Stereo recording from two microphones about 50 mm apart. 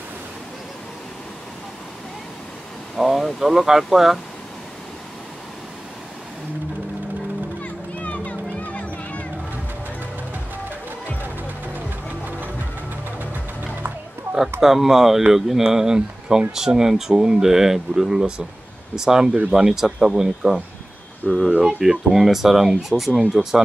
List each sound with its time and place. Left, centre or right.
3.0 s speech: centre
7.6 s music: left
14.6 s speech: centre